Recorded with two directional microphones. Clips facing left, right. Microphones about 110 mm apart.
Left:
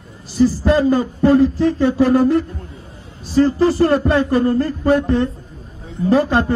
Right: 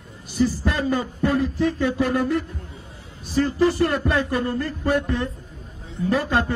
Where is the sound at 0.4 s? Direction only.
35° left (ahead or behind).